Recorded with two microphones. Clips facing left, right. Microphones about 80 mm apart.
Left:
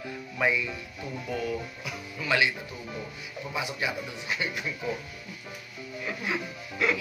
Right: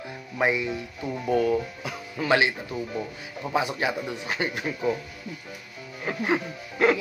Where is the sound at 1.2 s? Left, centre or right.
Right.